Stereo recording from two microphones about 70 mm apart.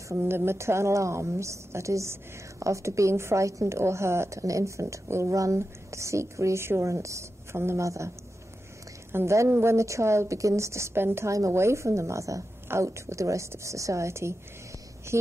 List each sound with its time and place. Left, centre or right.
0.1 s a woman's voice: right
9.1 s a woman's voice: right
11.3 s a woman's voice: right